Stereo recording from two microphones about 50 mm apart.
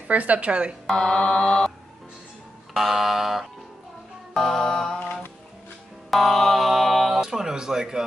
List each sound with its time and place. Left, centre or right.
0.1 s speech: right
0.9 s mantra: centre
2.7 s a sound: centre
4.3 s mantra: centre
6.0 s a sound: centre
7.2 s speech: centre